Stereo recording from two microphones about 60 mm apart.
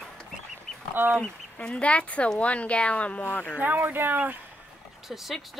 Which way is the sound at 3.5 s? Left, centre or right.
Right.